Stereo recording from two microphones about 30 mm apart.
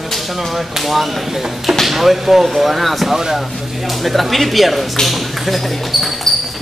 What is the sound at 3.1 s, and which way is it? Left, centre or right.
Speech, centre.